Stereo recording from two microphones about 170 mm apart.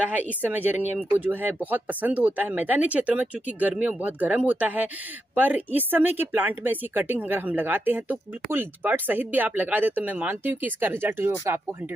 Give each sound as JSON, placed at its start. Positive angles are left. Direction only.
{"t": 0.0, "sound": "speech", "side_deg": -10}